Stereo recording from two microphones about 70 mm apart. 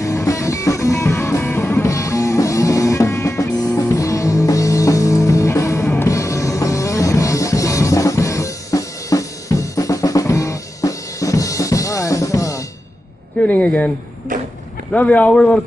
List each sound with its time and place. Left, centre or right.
0.0 s music: left
13.4 s speech: centre
14.9 s speech: centre